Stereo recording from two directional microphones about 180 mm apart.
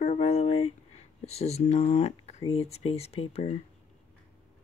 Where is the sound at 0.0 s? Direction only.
40° left (ahead or behind).